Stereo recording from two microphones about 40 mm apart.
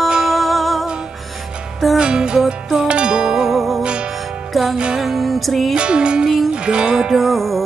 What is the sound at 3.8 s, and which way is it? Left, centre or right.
Music, right.